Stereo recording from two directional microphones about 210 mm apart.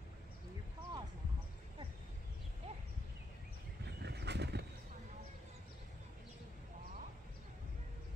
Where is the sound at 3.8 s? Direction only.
55° right (ahead or behind).